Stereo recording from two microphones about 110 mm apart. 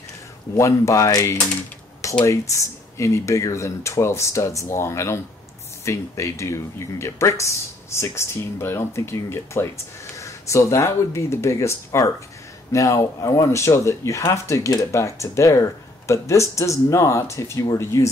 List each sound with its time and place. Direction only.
0.6 s speech: 25° left (ahead or behind)